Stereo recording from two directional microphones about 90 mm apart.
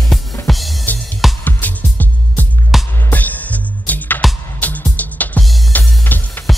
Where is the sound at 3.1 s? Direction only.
20° left (ahead or behind).